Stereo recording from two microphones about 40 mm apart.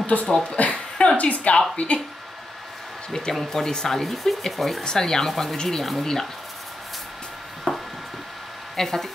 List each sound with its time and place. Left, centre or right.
0.0 s speech: left
0.3 s speech: left
0.6 s a sound: left
1.1 s speech: left
3.1 s speech: centre
4.0 s speech: centre
4.8 s speech: centre
7.7 s a sound: left
8.7 s speech: centre